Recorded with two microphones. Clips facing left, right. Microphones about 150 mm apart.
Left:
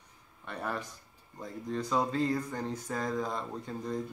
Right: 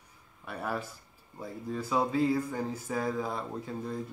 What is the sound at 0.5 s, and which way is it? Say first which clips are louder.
Speech: right 2 dB; 5° right (ahead or behind).